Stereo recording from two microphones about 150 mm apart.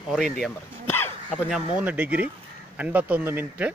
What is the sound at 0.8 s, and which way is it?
Hiccup, 15° left (ahead or behind).